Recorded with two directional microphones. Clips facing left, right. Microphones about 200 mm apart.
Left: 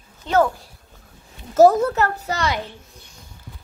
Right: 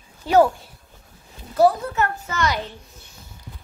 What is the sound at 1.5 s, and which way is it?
Speech, 45° left (ahead or behind).